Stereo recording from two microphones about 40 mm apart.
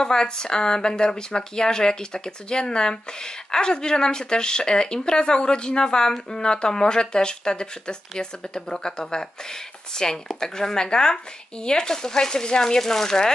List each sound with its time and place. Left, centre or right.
0.0 s speech: centre